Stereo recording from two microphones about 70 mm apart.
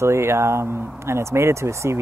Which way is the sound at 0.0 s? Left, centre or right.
Right.